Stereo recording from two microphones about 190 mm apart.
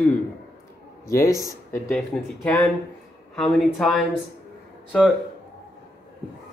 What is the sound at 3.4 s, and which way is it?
Speech, 5° left (ahead or behind).